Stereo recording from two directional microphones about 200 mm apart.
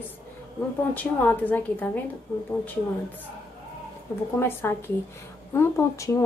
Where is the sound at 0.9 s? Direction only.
10° left (ahead or behind).